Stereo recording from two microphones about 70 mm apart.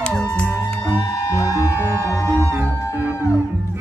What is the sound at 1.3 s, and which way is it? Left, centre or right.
Music, left.